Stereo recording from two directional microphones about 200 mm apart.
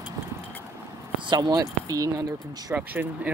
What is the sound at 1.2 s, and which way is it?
Speech, 20° right (ahead or behind).